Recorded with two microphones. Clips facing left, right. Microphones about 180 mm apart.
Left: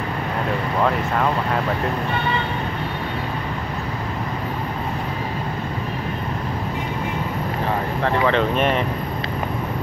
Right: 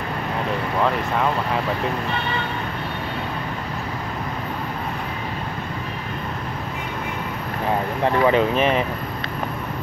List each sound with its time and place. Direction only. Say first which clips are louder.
8.0 s speech: right 2 dB; 10° right (ahead or behind)